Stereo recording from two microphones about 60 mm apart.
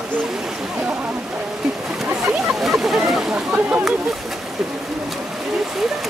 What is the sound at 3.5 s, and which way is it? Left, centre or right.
Speech, right.